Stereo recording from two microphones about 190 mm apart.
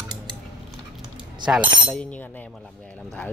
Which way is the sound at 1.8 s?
5° left (ahead or behind).